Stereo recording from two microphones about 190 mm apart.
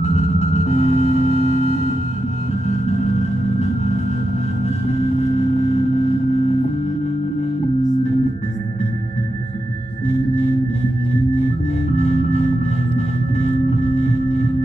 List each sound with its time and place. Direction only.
0.0 s music: 35° left (ahead or behind)